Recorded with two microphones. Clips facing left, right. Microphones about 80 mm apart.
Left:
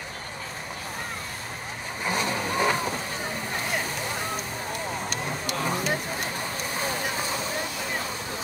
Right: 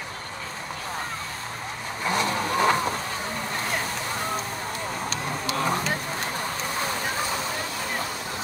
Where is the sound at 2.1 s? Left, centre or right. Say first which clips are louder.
Right 3 dB; right.